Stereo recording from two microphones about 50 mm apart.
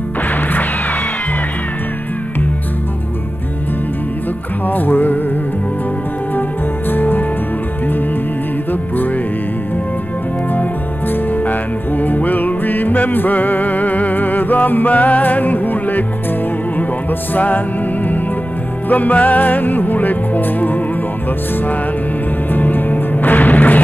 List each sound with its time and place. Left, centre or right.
4.6 s music: left
6.9 s music: left
12.0 s music: left
17.3 s music: left
18.9 s music: left
22.5 s music: left